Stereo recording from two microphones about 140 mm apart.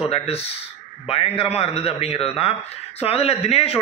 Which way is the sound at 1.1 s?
45° left (ahead or behind).